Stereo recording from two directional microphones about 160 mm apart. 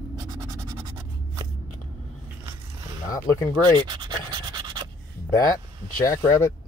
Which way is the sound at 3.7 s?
30° right (ahead or behind).